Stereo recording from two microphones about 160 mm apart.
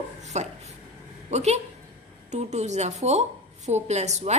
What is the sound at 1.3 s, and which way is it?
A woman's voice, 45° right (ahead or behind).